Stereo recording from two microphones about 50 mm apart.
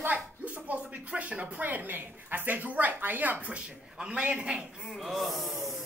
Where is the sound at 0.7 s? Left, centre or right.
Right.